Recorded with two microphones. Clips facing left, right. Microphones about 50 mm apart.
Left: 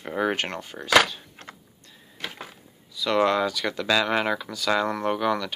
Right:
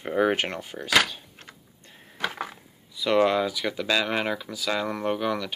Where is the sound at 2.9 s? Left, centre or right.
Centre.